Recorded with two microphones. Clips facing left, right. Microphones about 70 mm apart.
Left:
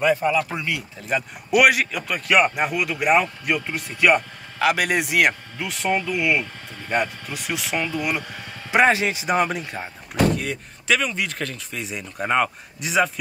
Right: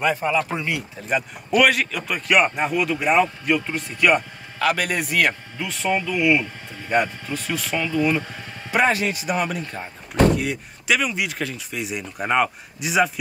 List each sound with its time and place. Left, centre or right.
0.0 s speech: right
1.6 s a man's voice: centre
10.3 s speech: centre